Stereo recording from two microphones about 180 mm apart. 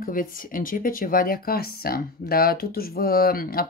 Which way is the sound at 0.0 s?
50° left (ahead or behind).